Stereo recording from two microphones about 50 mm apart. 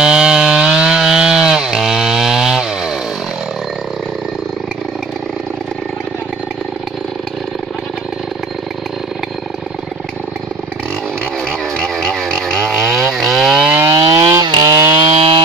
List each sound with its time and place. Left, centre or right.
0.0 s chainsaw: centre
11.4 s chainsaw: centre
13.7 s chainsaw: right